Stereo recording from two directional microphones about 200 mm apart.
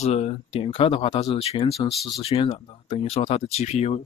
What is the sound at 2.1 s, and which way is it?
Speech, 30° left (ahead or behind).